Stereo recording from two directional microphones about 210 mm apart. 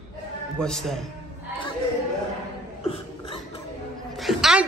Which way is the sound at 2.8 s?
25° left (ahead or behind).